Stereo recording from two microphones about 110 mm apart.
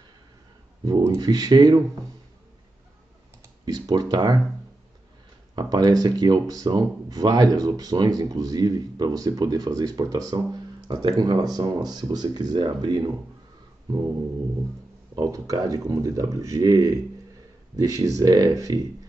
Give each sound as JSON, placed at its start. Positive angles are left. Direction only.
{"t": 0.8, "sound": "speech", "side_deg": -35}
{"t": 3.6, "sound": "speech", "side_deg": -35}
{"t": 5.6, "sound": "speech", "side_deg": -40}
{"t": 15.1, "sound": "speech", "side_deg": -35}